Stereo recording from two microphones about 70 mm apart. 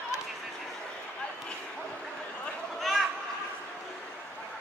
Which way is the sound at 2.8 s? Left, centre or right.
Centre.